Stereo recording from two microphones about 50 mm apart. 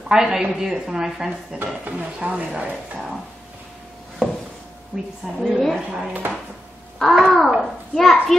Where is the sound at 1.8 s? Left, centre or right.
Right.